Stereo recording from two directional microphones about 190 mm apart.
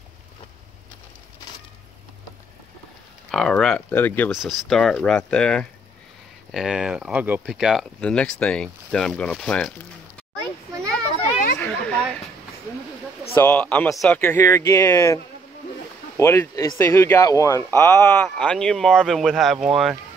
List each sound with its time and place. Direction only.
3.3 s speech: centre (ahead or behind)
4.3 s speech: centre (ahead or behind)
11.1 s children playing: 35° left (ahead or behind)
11.6 s a sound: 5° left (ahead or behind)
13.3 s speech: 15° left (ahead or behind)
16.2 s speech: 15° left (ahead or behind); by 20.0 s centre (ahead or behind)